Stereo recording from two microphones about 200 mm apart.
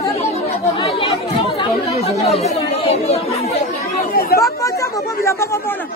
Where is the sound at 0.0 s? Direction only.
30° left (ahead or behind).